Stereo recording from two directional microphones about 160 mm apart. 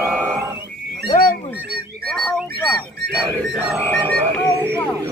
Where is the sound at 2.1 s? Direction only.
5° left (ahead or behind).